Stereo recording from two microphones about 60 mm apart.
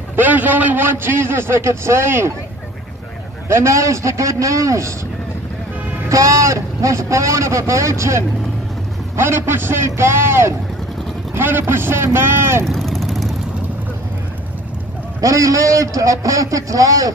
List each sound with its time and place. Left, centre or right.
0.1 s a man's voice: right
3.4 s a man's voice: right
6.0 s a man's voice: right
9.1 s a man's voice: right
12.6 s vehicle: centre
15.1 s a man's voice: right